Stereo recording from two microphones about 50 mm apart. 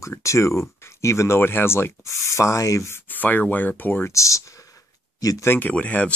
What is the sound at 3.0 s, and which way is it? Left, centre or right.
Speech, left.